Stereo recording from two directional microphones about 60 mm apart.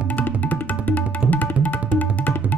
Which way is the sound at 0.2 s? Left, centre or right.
Left.